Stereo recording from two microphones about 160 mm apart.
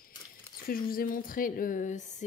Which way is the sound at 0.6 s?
65° left (ahead or behind).